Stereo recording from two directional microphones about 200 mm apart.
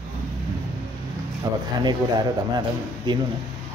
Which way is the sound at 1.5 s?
20° right (ahead or behind).